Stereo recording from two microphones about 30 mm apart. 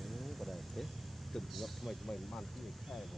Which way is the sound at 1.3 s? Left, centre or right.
Centre.